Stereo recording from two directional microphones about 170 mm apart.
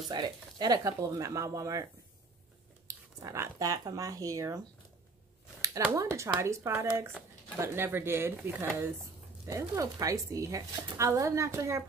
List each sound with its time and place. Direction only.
0.1 s speech: 25° right (ahead or behind)
2.9 s speech: 20° right (ahead or behind)
5.6 s a sound: 15° right (ahead or behind)
6.1 s speech: 15° right (ahead or behind)